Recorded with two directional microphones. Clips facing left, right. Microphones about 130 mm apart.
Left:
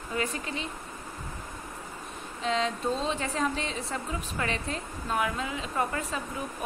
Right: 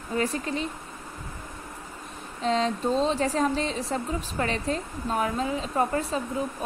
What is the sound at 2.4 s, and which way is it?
A woman's voice, 35° right (ahead or behind).